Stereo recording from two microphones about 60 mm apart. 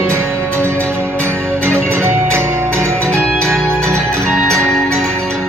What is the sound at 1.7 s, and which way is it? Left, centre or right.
Music, right.